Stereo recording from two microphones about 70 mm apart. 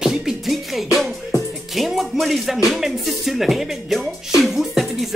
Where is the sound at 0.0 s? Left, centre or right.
Centre.